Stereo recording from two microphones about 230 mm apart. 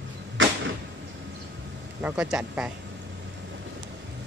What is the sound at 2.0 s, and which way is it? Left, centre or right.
Speech, centre.